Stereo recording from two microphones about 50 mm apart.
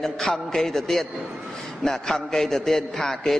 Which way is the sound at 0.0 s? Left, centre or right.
Centre.